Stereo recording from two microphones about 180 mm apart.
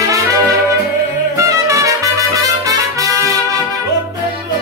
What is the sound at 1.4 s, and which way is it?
Trumpet, 15° right (ahead or behind).